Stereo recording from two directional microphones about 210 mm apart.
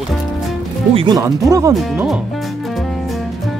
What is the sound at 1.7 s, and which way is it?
Speech, centre (ahead or behind).